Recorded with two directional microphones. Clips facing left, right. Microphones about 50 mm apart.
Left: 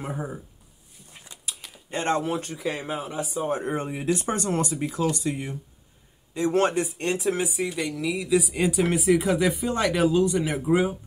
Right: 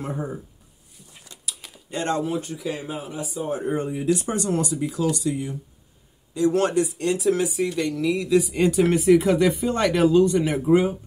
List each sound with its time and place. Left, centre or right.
0.0 s speech: centre
1.2 s a sound: left
1.9 s speech: left; by 11.0 s centre